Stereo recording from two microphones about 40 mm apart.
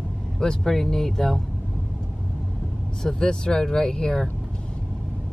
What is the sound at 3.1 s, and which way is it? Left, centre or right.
Speech, centre.